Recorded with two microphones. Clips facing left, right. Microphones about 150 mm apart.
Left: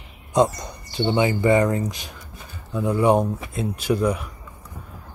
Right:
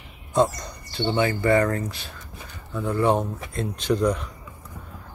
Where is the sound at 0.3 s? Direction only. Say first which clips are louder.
Left 2 dB; 15° left (ahead or behind).